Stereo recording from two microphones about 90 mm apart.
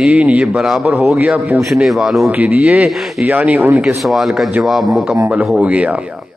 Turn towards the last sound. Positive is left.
turn(degrees=-15)  # may be behind; listen again after turning